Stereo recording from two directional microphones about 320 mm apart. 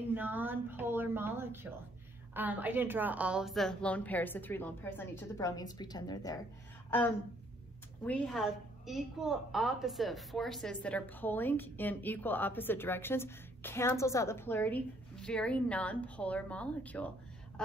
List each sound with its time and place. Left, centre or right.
0.1 s a woman's voice: centre
8.0 s a woman's voice: centre